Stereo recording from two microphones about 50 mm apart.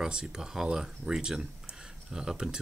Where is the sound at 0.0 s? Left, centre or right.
Centre.